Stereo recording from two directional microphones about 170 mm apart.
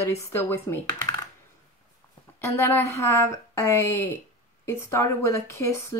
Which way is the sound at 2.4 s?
15° left (ahead or behind).